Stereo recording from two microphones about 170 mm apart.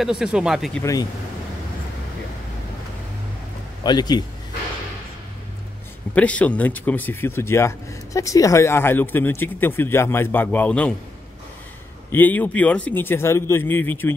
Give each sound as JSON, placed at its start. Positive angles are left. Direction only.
{"t": 0.0, "sound": "speech", "side_deg": -5}
{"t": 3.8, "sound": "speech", "side_deg": 25}
{"t": 6.1, "sound": "speech", "side_deg": 10}
{"t": 12.1, "sound": "speech", "side_deg": 10}